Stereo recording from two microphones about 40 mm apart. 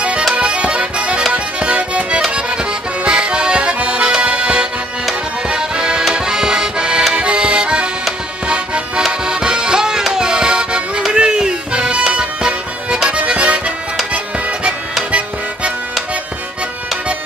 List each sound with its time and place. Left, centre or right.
0.3 s accordion: right
9.2 s music: centre
10.1 s accordion: right
11.1 s music: right
15.0 s music: right